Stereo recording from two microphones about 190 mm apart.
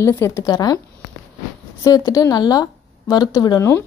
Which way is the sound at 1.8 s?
20° left (ahead or behind).